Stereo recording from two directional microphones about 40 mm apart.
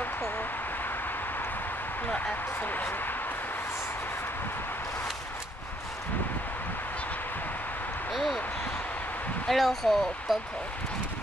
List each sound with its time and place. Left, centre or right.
2.6 s speech: left
8.1 s a sound: centre
9.5 s speech: centre